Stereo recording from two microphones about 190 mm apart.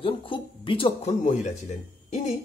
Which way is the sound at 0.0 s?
25° left (ahead or behind).